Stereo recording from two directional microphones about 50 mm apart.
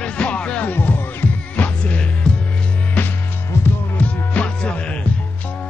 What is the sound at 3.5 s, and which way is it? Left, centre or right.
Music, left.